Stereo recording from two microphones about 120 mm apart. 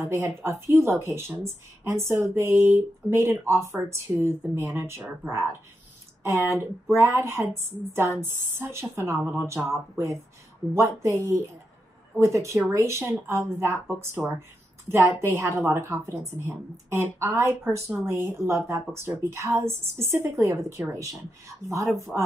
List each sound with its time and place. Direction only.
0.0 s speech: 25° right (ahead or behind)
6.6 s speech: 20° right (ahead or behind)